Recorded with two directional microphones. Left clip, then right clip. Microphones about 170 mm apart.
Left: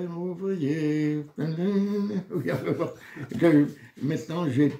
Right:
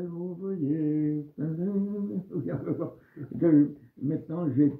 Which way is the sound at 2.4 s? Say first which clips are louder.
Left 5 dB; 25° left (ahead or behind).